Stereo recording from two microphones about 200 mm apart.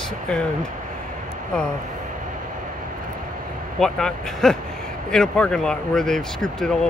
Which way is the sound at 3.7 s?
Centre (ahead or behind).